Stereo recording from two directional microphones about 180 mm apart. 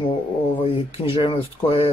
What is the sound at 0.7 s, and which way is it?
Speech, 30° left (ahead or behind).